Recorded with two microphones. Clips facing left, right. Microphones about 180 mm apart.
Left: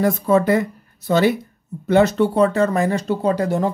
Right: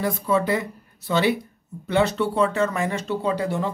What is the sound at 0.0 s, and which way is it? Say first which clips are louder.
Speech: left 6 dB; 45° left (ahead or behind).